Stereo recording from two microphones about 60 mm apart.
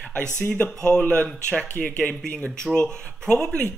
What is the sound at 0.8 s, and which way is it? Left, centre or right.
Speech, left.